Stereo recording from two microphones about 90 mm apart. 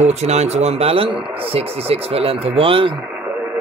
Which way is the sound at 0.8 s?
90° right.